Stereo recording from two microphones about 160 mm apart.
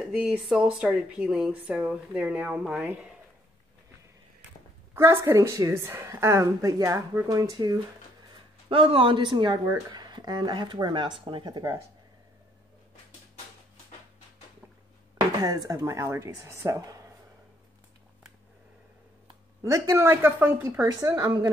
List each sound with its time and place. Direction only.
0.0 s speech: 5° right (ahead or behind)
4.9 s speech: 15° right (ahead or behind)
8.6 s speech: 35° right (ahead or behind)
15.1 s speech: 25° right (ahead or behind)
19.6 s speech: 15° right (ahead or behind)